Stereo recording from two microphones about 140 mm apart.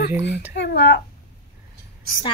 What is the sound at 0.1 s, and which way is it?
Speech, 15° right (ahead or behind).